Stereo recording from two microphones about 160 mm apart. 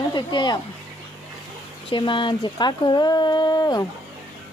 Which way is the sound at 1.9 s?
30° left (ahead or behind).